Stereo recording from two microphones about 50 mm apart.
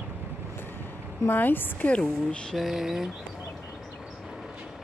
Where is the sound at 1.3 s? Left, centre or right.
Left.